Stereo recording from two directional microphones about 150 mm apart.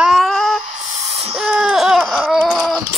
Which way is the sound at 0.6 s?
55° right (ahead or behind).